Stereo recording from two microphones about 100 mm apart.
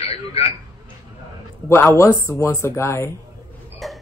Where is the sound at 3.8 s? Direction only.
Centre (ahead or behind).